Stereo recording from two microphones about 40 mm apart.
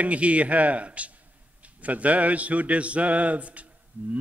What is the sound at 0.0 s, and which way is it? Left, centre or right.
A man's voice, right.